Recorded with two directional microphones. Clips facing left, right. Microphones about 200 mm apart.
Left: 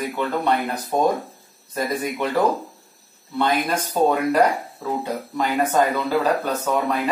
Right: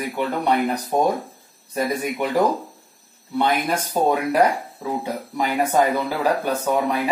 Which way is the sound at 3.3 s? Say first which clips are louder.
Even; 15° right (ahead or behind).